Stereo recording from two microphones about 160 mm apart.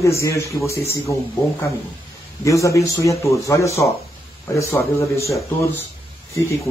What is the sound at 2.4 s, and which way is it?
Speech, 20° left (ahead or behind).